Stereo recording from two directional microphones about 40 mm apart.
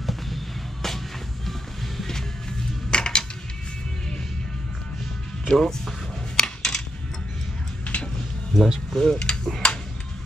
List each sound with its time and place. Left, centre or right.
0.8 s music: centre
2.9 s music: left
5.6 s speech: centre
6.3 s a sound: centre
7.8 s a sound: left
8.5 s speech: centre
8.9 s speech: centre